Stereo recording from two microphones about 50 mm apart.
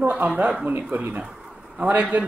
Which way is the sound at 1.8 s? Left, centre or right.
Right.